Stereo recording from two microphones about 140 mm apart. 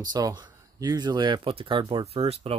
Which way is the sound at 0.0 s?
30° right (ahead or behind).